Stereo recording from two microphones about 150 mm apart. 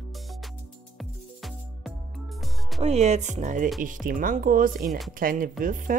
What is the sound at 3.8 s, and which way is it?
Speech, 65° right (ahead or behind).